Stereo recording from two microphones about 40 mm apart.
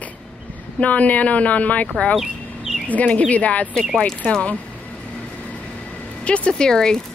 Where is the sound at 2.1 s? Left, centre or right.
Centre.